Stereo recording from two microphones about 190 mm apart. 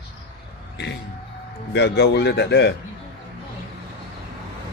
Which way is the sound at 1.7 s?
60° left (ahead or behind).